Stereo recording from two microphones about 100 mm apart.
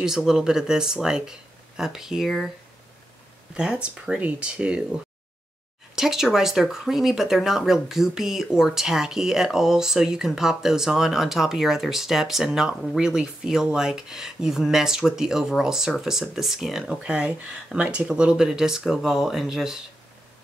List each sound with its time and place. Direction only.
0.0 s speech: 5° right (ahead or behind)
3.5 s speech: 10° right (ahead or behind)